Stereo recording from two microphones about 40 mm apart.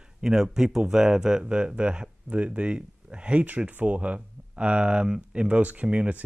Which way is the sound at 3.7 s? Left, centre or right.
Right.